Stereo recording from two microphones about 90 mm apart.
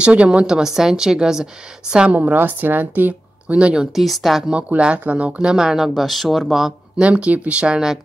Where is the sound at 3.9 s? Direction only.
Centre (ahead or behind).